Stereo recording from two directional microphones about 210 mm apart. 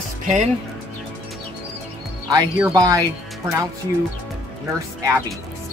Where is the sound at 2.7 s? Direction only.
15° right (ahead or behind).